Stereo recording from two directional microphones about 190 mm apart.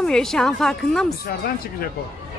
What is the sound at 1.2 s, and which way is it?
Speech, 50° left (ahead or behind).